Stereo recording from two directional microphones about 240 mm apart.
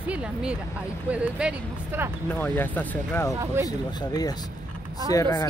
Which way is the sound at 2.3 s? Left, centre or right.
Centre.